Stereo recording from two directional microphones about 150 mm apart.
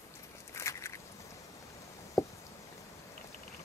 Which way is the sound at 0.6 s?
20° left (ahead or behind).